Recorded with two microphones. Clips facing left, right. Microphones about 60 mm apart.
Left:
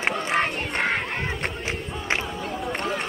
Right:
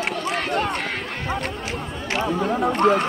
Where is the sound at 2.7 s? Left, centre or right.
Right.